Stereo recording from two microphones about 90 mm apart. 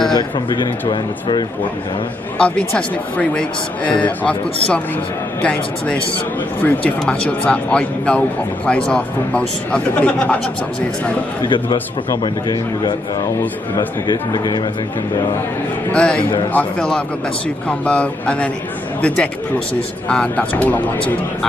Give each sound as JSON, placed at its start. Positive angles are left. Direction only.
{"t": 0.1, "sound": "speech", "side_deg": 55}
{"t": 2.3, "sound": "speech", "side_deg": 15}
{"t": 5.4, "sound": "speech", "side_deg": 15}
{"t": 11.4, "sound": "a man's voice", "side_deg": 65}
{"t": 12.1, "sound": "speech", "side_deg": 50}
{"t": 15.9, "sound": "speech", "side_deg": 10}
{"t": 16.2, "sound": "speech", "side_deg": 70}
{"t": 16.5, "sound": "speech", "side_deg": 10}